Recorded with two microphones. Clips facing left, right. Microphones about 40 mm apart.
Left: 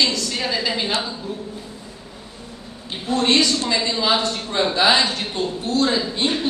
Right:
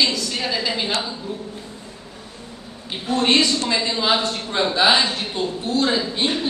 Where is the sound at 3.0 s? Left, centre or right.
Right.